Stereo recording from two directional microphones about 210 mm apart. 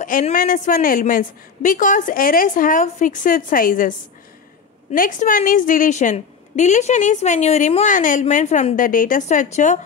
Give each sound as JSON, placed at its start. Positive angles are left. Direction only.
{"t": 0.0, "sound": "a woman's voice", "side_deg": 40}
{"t": 4.9, "sound": "a woman's voice", "side_deg": 40}